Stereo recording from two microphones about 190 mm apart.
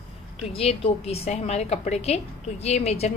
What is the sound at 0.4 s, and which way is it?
A woman's voice, 30° left (ahead or behind).